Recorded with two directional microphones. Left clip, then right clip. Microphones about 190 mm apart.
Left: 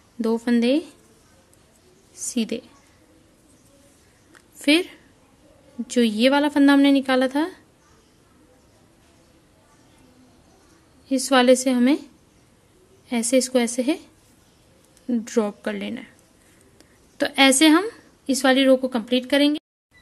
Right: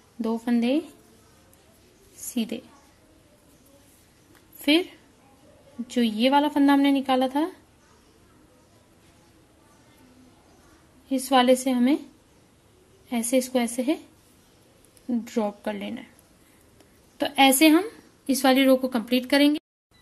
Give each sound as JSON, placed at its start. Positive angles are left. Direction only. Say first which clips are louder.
{"t": 0.2, "sound": "a woman's voice", "louder": "left 5 dB", "side_deg": 25}
{"t": 2.3, "sound": "a woman's voice", "louder": "left 4 dB", "side_deg": 25}
{"t": 4.6, "sound": "a woman's voice", "louder": "left 3 dB", "side_deg": 25}
{"t": 11.1, "sound": "a woman's voice", "louder": "left 3 dB", "side_deg": 25}
{"t": 13.1, "sound": "a woman's voice", "louder": "left 4 dB", "side_deg": 20}
{"t": 15.0, "sound": "a woman's voice", "louder": "left 4 dB", "side_deg": 25}
{"t": 17.2, "sound": "a woman's voice", "louder": "left 2 dB", "side_deg": 25}
{"t": 18.2, "sound": "a woman's voice", "louder": "left 2 dB", "side_deg": 10}